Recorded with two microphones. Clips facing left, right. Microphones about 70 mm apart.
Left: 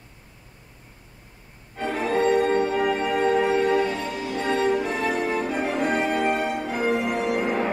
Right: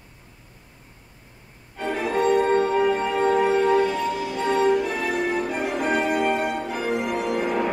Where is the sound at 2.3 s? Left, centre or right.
Right.